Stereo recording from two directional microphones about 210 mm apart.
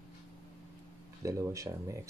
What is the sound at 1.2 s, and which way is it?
Speech, 15° right (ahead or behind).